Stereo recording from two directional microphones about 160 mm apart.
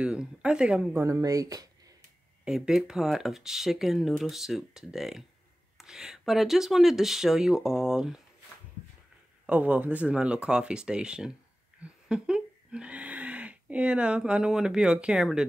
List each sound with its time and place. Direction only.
0.0 s speech: 5° right (ahead or behind)
0.9 s speech: 20° right (ahead or behind)
2.4 s speech: 5° right (ahead or behind)
9.5 s speech: 10° right (ahead or behind)